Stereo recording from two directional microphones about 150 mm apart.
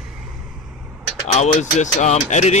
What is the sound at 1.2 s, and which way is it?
Speech, 50° left (ahead or behind).